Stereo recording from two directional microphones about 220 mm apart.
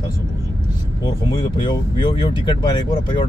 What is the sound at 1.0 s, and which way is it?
Speech, 20° left (ahead or behind).